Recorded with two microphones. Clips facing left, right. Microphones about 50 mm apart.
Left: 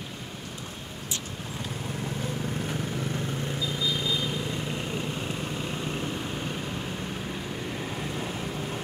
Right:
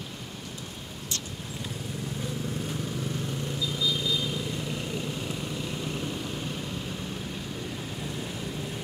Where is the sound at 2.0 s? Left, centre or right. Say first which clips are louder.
Left 1 dB; left.